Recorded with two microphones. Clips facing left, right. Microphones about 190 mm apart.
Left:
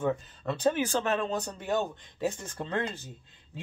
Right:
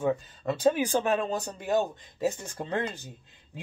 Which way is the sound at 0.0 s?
10° right (ahead or behind).